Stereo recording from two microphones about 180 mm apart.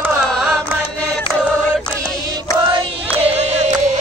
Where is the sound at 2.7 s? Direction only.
30° right (ahead or behind).